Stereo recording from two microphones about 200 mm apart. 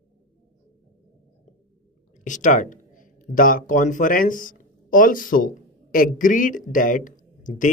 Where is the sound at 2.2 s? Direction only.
40° left (ahead or behind).